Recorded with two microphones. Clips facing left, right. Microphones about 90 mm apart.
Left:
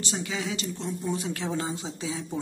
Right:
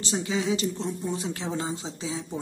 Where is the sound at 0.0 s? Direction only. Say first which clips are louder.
Right 4 dB; 30° right (ahead or behind).